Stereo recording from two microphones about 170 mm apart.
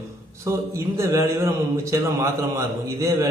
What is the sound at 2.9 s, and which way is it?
Speech, 20° right (ahead or behind).